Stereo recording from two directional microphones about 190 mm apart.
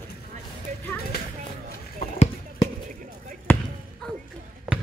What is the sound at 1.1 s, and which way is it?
Speech, 55° left (ahead or behind).